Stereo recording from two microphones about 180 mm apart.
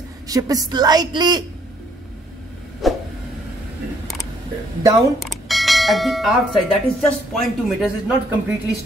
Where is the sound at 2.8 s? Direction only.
Centre (ahead or behind).